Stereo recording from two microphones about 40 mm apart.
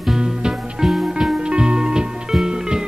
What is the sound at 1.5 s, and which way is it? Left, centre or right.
Music, right.